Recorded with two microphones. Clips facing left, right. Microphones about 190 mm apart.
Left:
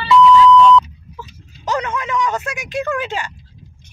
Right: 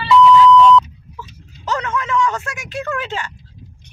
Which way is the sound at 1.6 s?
15° left (ahead or behind).